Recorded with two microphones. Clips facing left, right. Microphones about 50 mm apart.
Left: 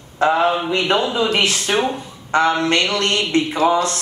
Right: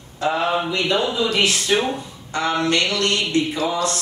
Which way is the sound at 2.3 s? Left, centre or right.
Left.